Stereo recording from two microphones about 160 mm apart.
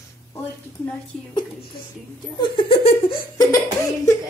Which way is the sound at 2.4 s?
30° left (ahead or behind).